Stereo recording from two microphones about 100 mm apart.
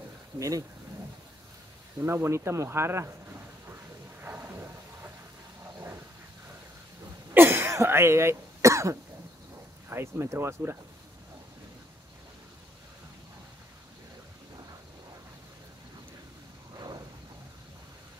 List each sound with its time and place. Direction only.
0.4 s speech: 35° right (ahead or behind)
2.0 s speech: 25° right (ahead or behind)
4.2 s a sound: 20° right (ahead or behind)
7.3 s cough: 20° right (ahead or behind)
9.8 s speech: 25° right (ahead or behind)
16.7 s a sound: 45° right (ahead or behind)